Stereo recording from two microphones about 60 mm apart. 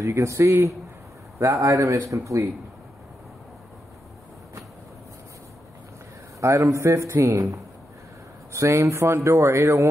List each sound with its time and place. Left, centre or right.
0.0 s speech: right
6.7 s speech: right
8.5 s speech: right